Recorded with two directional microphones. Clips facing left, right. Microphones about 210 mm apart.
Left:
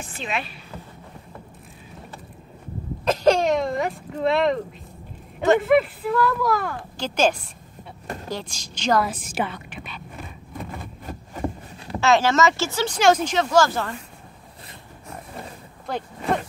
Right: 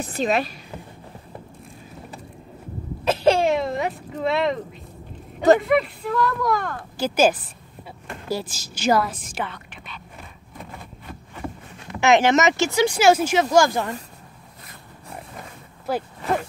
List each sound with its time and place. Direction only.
0.0 s a woman's voice: 40° right (ahead or behind)
3.1 s hiccup: 5° right (ahead or behind)
5.6 s speech: centre (ahead or behind)
7.0 s speech: 5° right (ahead or behind)
9.0 s a woman's voice: 5° left (ahead or behind)
11.1 s a sound: 35° left (ahead or behind)
12.0 s speech: 20° right (ahead or behind)
15.9 s speech: 5° right (ahead or behind)